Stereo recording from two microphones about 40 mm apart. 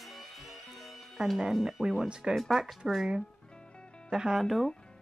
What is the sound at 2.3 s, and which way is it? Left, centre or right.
Speech, centre.